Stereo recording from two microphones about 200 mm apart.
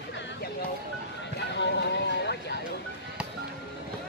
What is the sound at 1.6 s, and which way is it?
Music, 60° left (ahead or behind).